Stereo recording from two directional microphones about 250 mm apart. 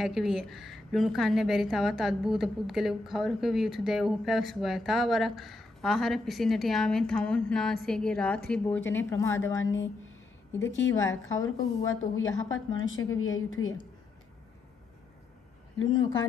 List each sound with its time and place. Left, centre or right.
0.0 s a woman's voice: centre
9.6 s a woman's voice: left
15.9 s speech: centre